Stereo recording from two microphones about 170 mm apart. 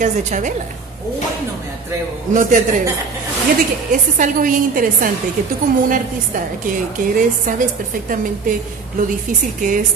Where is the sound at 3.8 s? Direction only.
50° right (ahead or behind).